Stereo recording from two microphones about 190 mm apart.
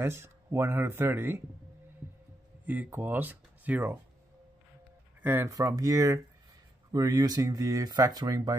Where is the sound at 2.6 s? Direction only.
10° right (ahead or behind).